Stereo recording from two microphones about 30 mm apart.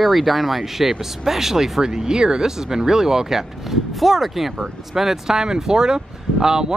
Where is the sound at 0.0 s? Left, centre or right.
Centre.